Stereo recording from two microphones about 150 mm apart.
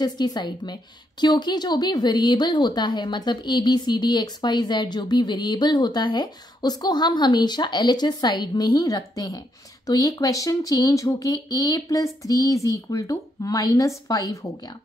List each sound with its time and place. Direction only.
0.0 s a woman's voice: 30° left (ahead or behind)